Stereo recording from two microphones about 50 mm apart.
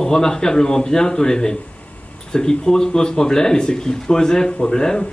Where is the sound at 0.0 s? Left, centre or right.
Centre.